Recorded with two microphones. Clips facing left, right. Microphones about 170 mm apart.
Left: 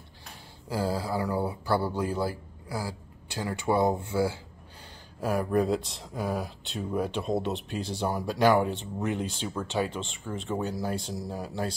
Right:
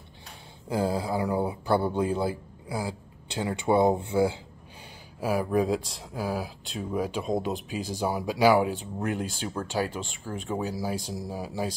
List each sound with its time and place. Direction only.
0.7 s speech: 20° right (ahead or behind)
5.2 s speech: 5° right (ahead or behind)